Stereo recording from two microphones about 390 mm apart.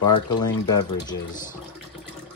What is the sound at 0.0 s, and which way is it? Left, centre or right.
Speech, centre.